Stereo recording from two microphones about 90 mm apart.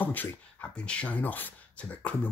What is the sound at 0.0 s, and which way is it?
Speech, 20° left (ahead or behind).